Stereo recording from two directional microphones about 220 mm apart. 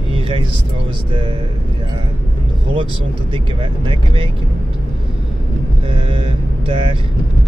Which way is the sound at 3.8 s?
25° right (ahead or behind).